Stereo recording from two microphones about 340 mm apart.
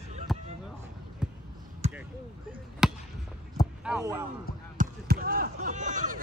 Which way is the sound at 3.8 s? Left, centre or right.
Centre.